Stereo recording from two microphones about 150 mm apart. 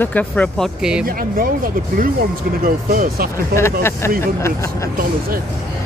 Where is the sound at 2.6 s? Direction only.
70° right (ahead or behind).